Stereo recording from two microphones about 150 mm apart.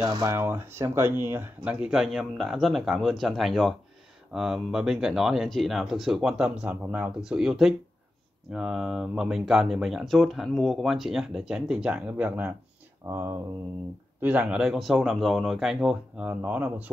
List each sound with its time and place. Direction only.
0.0 s speech: 25° right (ahead or behind)